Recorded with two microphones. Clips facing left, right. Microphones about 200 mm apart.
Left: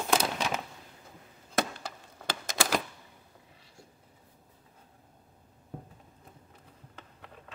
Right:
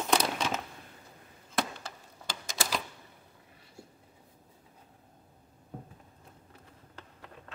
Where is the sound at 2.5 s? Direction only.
55° left (ahead or behind).